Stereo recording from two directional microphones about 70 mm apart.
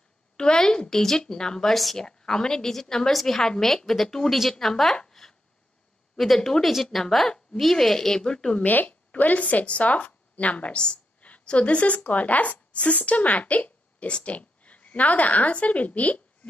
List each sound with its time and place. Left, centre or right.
0.4 s a woman's voice: centre
8.8 s a woman's voice: left